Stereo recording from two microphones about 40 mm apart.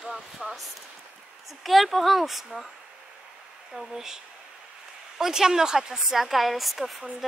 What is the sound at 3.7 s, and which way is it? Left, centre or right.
Speech, centre.